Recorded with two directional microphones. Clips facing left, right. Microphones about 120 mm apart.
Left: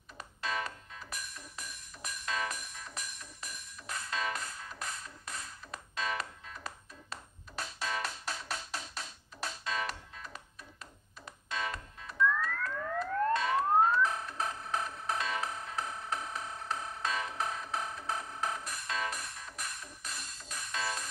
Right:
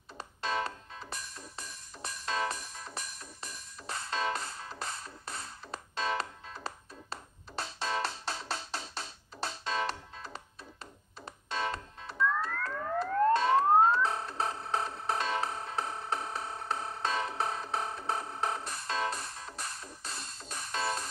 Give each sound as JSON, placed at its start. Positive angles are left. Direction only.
{"t": 0.2, "sound": "music", "side_deg": -30}